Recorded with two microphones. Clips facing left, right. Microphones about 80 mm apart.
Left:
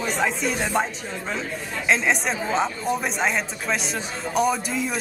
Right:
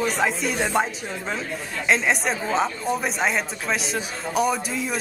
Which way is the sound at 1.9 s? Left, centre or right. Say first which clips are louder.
Even; centre.